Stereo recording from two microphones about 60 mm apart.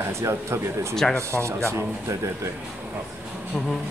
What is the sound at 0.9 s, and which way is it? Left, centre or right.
Speech, centre.